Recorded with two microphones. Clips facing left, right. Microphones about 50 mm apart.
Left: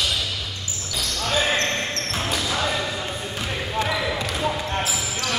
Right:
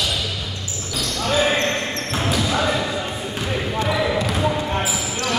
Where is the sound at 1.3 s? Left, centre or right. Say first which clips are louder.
Right 3 dB; centre.